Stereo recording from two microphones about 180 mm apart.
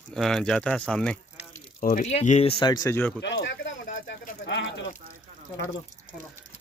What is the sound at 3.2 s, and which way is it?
Speech, 80° left.